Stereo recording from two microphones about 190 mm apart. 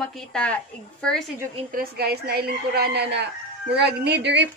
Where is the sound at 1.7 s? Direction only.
55° right (ahead or behind).